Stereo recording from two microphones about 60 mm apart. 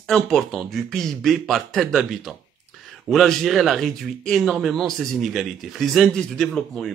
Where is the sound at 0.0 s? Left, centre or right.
Centre.